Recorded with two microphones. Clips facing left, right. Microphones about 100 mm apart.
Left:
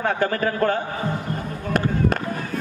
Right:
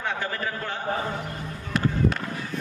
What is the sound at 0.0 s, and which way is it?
Speech, 50° left (ahead or behind).